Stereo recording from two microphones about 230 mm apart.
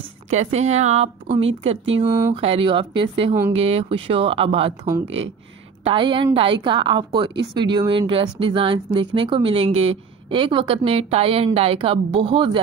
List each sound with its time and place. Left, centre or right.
0.3 s speech: right
2.0 s speech: centre
2.3 s speech: right
5.0 s speech: right
5.9 s speech: right